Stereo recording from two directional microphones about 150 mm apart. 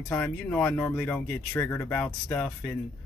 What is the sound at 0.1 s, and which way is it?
A man's voice, 10° left (ahead or behind).